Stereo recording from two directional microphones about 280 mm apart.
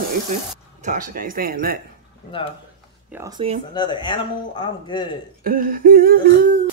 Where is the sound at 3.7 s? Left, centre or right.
Centre.